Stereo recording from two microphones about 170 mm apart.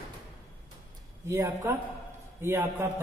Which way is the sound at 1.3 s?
15° right (ahead or behind).